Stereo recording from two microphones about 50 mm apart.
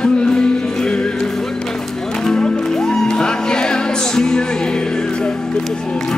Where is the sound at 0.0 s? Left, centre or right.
Centre.